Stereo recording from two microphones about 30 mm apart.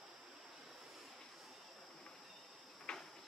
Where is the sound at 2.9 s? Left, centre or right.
Left.